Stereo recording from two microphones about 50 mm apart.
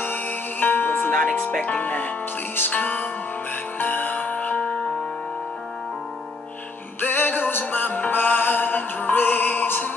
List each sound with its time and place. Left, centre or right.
0.0 s music: left
1.1 s music: centre
1.8 s speech: left
3.7 s music: left
7.0 s music: left